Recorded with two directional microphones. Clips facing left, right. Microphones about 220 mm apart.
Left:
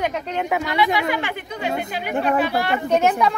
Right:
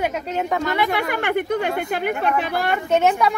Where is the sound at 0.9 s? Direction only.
55° right (ahead or behind).